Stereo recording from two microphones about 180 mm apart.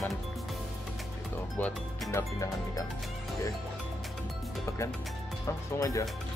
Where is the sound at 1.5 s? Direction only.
10° left (ahead or behind).